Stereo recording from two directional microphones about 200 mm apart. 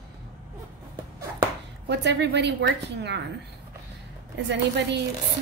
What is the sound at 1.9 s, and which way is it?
A woman's voice, 60° right (ahead or behind).